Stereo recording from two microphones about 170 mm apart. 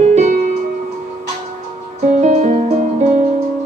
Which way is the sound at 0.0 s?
40° right (ahead or behind).